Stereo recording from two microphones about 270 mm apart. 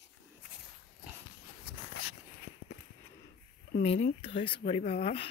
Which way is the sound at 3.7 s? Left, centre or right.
Left.